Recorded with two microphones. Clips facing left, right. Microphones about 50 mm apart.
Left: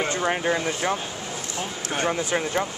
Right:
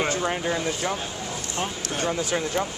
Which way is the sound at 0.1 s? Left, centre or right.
Left.